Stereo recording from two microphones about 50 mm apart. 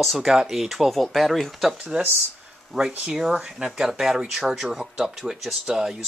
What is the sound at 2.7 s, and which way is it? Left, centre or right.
Speech, centre.